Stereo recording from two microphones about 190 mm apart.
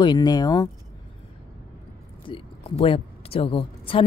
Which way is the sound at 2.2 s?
30° left (ahead or behind).